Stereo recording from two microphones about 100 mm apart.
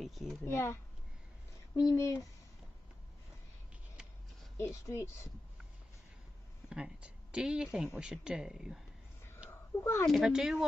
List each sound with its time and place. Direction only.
0.0 s a child's voice: centre (ahead or behind)
0.5 s speech: 25° left (ahead or behind)
1.8 s speech: 35° left (ahead or behind)
4.6 s speech: 30° left (ahead or behind)
6.7 s speech: 10° right (ahead or behind)
9.5 s a sound: 25° left (ahead or behind)
10.0 s speech: centre (ahead or behind)